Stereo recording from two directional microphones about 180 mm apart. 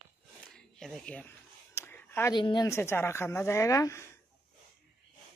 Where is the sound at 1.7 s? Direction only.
15° left (ahead or behind).